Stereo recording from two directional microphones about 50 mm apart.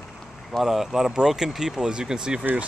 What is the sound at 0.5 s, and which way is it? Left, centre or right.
Speech, centre.